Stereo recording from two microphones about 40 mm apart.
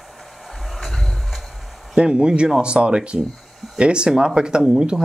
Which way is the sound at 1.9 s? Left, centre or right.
Right.